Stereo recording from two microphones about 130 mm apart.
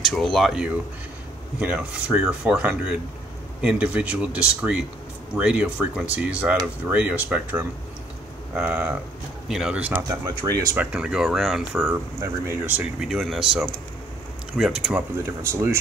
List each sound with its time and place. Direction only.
0.0 s speech: centre (ahead or behind)
10.2 s speech: 30° right (ahead or behind)
10.8 s speech: 5° right (ahead or behind)
11.8 s speech: 15° right (ahead or behind)
13.0 s speech: centre (ahead or behind)
15.2 s speech: 20° right (ahead or behind)